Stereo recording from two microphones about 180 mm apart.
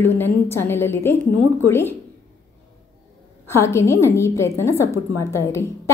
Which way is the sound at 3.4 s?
15° left (ahead or behind).